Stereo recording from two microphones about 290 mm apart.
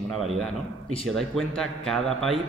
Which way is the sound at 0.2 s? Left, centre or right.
Centre.